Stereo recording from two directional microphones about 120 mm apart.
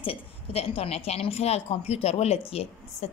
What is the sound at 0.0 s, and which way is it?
A woman's voice, 50° left (ahead or behind).